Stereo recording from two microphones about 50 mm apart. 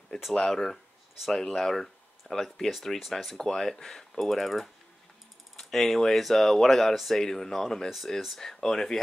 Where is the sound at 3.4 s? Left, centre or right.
Centre.